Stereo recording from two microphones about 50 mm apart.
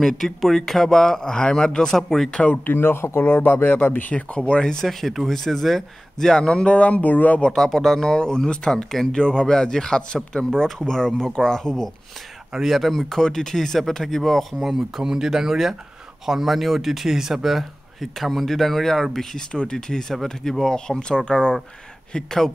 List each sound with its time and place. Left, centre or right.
0.0 s speech: centre
2.4 s speech: left
2.7 s speech: left
4.1 s speech: left
7.5 s speech: centre